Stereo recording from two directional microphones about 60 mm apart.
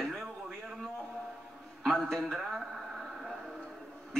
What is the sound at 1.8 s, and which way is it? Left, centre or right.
Speech, centre.